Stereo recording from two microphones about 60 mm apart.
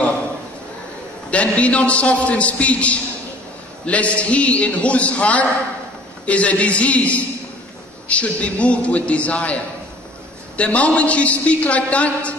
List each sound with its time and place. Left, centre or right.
1.3 s a woman's voice: left
10.6 s a woman's voice: left